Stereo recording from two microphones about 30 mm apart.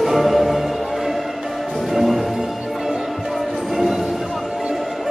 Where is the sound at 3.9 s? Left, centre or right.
Centre.